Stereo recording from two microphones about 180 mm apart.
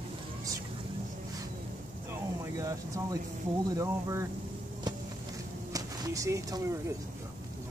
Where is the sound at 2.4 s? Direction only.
15° right (ahead or behind).